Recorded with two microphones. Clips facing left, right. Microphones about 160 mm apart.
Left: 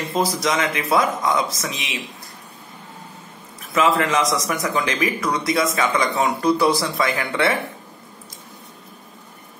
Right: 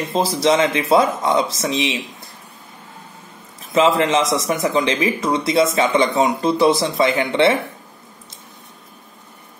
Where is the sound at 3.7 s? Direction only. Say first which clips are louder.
Right 3 dB; 25° right (ahead or behind).